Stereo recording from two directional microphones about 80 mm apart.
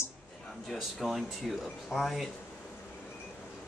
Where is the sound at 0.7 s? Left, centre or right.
Centre.